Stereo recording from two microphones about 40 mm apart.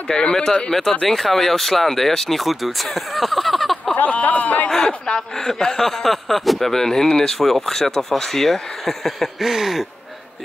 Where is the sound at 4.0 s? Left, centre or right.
Left.